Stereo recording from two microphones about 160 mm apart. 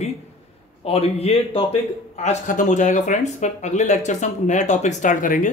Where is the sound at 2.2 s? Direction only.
55° left (ahead or behind).